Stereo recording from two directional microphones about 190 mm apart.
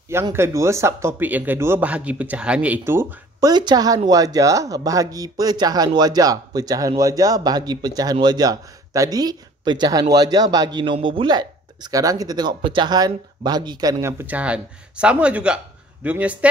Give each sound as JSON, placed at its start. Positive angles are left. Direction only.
{"t": 0.1, "sound": "speech", "side_deg": -15}